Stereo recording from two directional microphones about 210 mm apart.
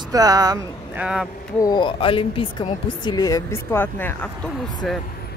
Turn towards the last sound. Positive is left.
turn(degrees=5)  # may be behind; listen again after turning